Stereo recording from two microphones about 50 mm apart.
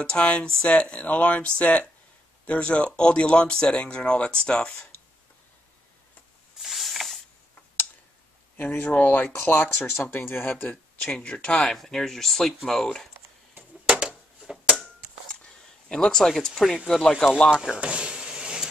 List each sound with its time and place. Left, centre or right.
0.0 s speech: left
6.6 s a sound: centre
8.5 s speech: left
9.3 s speech: left
11.0 s speech: left
11.7 s speech: centre
13.6 s a sound: right
15.9 s speech: centre
17.7 s a sound: right